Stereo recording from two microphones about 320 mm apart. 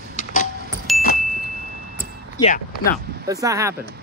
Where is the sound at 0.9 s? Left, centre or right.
Centre.